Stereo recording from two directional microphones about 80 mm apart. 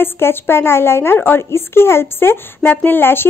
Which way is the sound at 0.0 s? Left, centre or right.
Left.